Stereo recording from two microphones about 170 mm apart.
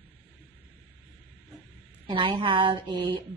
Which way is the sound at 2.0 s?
30° right (ahead or behind).